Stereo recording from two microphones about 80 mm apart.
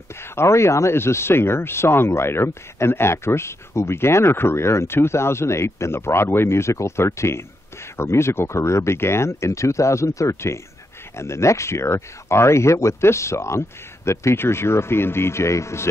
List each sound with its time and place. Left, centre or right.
0.1 s speech: left